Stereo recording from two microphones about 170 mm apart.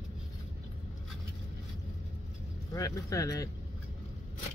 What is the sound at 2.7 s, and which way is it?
Speech, 20° left (ahead or behind).